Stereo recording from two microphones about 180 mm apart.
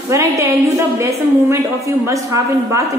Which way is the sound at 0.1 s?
15° right (ahead or behind).